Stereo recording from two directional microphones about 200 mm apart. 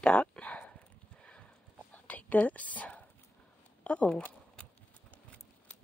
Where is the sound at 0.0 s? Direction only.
5° left (ahead or behind).